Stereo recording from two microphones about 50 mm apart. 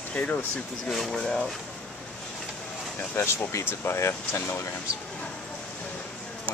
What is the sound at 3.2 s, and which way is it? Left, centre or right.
Speech, left.